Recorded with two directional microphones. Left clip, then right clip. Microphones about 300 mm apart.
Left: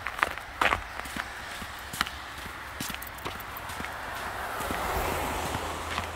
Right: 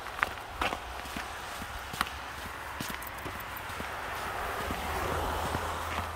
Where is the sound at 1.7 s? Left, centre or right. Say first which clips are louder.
Left 2 dB; centre.